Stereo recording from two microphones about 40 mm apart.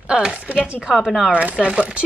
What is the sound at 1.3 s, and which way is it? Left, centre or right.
Speech, right.